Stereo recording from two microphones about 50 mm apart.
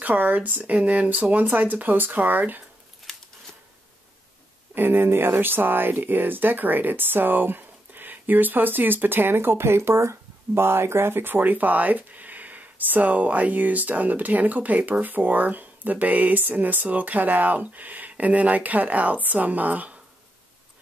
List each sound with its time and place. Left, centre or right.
0.0 s speech: right
4.7 s speech: right